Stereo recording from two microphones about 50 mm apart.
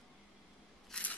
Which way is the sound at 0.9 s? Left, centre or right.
Centre.